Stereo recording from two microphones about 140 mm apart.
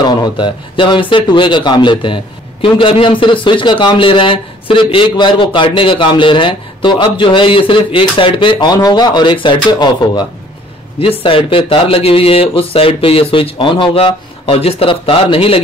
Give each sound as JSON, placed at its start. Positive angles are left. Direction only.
{"t": 0.0, "sound": "a man's voice", "side_deg": 30}